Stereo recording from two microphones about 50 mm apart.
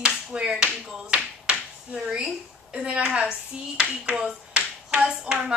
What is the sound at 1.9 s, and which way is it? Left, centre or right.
A woman's voice, centre.